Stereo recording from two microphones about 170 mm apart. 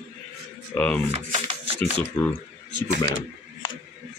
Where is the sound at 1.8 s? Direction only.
10° left (ahead or behind).